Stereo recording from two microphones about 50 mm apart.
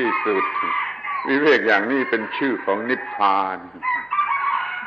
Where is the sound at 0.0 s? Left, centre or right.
Centre.